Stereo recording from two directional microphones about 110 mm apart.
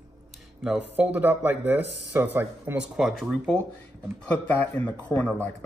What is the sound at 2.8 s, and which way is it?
Speech, 5° right (ahead or behind).